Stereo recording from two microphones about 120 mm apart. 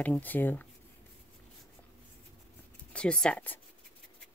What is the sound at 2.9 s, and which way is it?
Speech, 5° left (ahead or behind).